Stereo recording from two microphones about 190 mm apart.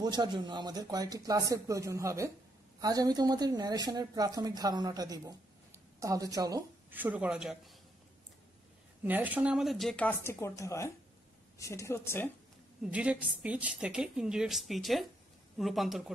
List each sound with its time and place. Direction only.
0.0 s a woman's voice: 20° right (ahead or behind); by 7.7 s 5° right (ahead or behind)
9.0 s a woman's voice: 10° right (ahead or behind); by 12.3 s 15° left (ahead or behind)
12.8 s a woman's voice: 5° right (ahead or behind)